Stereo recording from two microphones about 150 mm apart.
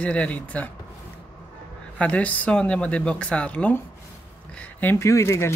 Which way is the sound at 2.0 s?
10° left (ahead or behind).